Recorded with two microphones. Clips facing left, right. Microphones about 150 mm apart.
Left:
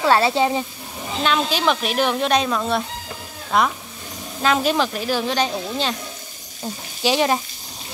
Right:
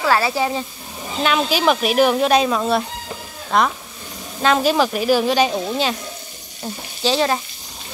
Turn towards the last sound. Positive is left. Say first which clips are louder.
# even
turn(degrees=15)  # may be behind; listen again after turning